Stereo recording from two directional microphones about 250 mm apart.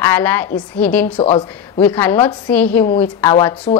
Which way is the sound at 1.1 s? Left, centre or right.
Left.